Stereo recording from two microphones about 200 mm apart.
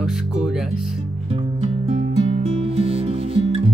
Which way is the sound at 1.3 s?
30° right (ahead or behind).